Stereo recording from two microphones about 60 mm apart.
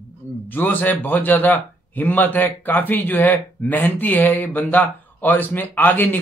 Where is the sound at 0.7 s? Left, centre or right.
Left.